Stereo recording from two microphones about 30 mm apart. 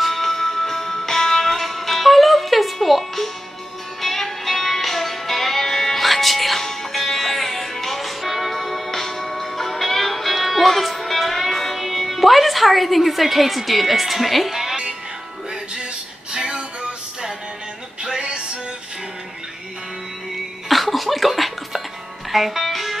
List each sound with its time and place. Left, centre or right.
0.0 s music: centre
16.3 s music: right
18.0 s music: right
20.6 s a sound: centre
22.3 s music: centre